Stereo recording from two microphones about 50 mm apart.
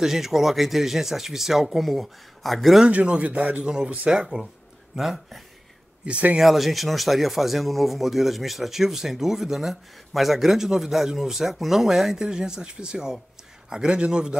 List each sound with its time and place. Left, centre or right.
0.0 s speech: centre
2.9 s speech: right
4.9 s speech: centre
6.0 s speech: right
6.4 s speech: centre